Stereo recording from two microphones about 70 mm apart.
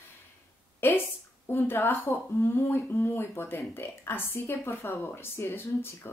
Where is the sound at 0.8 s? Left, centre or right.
Left.